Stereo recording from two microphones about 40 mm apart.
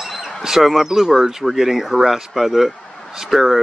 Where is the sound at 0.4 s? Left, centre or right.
Centre.